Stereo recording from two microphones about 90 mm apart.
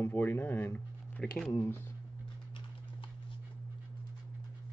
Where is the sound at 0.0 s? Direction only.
25° left (ahead or behind).